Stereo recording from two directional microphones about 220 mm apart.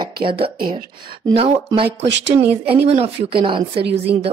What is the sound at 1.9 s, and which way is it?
Speech, 55° right (ahead or behind).